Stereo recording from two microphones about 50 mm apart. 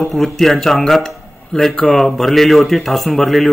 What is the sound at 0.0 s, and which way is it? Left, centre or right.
A man's voice, centre.